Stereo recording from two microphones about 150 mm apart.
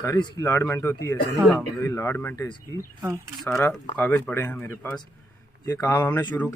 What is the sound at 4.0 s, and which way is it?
A man's voice, 10° left (ahead or behind).